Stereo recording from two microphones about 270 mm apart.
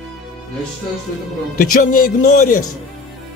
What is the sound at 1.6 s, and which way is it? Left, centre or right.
Speech, left.